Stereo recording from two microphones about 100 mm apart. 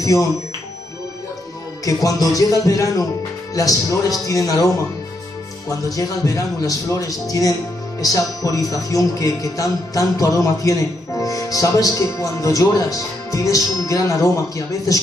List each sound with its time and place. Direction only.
0.0 s speech: 35° left (ahead or behind)
1.9 s speech: 35° left (ahead or behind)